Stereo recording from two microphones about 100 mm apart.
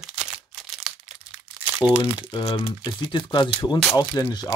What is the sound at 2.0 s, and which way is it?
Speech, 55° left (ahead or behind).